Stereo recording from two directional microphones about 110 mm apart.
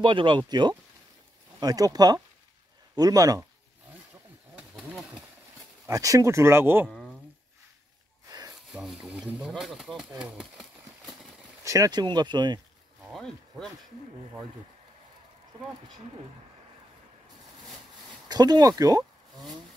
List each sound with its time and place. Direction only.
0.0 s speech: 45° right (ahead or behind)
5.9 s speech: 30° right (ahead or behind)
8.3 s a sound: 35° right (ahead or behind)
8.7 s speech: 5° right (ahead or behind)
10.3 s a sound: 5° right (ahead or behind)
11.6 s speech: 30° right (ahead or behind)
13.1 s speech: 5° left (ahead or behind)
18.3 s speech: 35° right (ahead or behind)